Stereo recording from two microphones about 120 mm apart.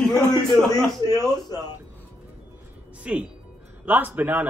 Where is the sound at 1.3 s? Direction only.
35° left (ahead or behind).